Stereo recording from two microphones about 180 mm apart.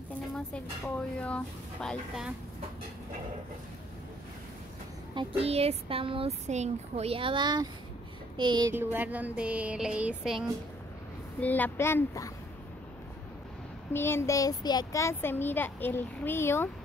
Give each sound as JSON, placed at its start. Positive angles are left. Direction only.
{"t": 0.5, "sound": "a woman's voice", "side_deg": 5}
{"t": 5.1, "sound": "speech", "side_deg": -35}
{"t": 8.7, "sound": "a sound", "side_deg": -10}
{"t": 11.4, "sound": "a child's voice", "side_deg": 10}
{"t": 13.9, "sound": "a child's voice", "side_deg": 15}